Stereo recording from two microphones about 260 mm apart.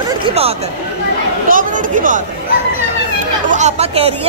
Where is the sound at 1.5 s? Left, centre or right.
Right.